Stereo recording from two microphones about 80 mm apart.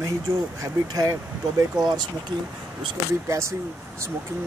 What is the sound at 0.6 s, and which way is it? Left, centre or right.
Speech, right.